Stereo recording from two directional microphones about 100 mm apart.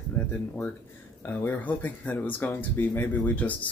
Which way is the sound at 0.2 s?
15° left (ahead or behind).